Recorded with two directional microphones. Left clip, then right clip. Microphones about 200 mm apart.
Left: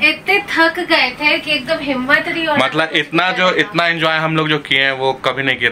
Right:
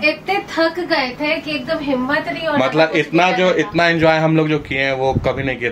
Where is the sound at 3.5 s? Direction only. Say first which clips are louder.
Even; 20° right (ahead or behind).